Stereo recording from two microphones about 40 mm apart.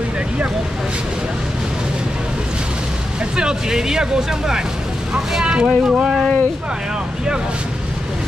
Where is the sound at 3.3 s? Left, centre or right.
Centre.